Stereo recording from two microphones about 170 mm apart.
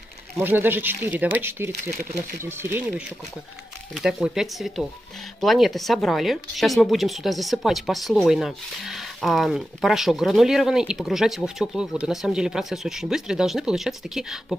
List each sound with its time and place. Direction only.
0.4 s speech: 10° right (ahead or behind)
1.9 s speech: 65° right (ahead or behind)
2.4 s speech: 15° right (ahead or behind)
3.9 s speech: centre (ahead or behind)